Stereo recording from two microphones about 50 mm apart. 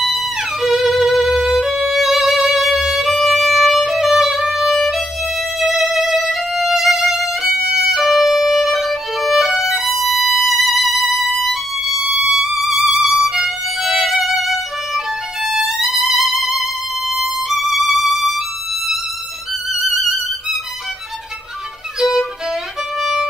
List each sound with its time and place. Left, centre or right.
0.0 s music: centre
12.4 s violin: centre
19.7 s violin: centre
22.9 s violin: centre